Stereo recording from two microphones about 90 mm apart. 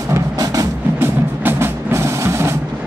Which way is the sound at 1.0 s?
25° right (ahead or behind).